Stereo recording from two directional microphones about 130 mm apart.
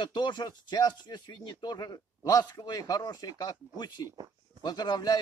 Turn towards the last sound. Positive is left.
turn(degrees=30)  # may be behind; listen again after turning